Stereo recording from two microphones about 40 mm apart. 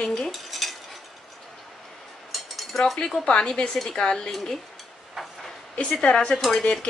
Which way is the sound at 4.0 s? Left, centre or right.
Centre.